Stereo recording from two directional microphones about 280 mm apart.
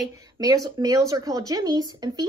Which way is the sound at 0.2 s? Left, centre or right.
Centre.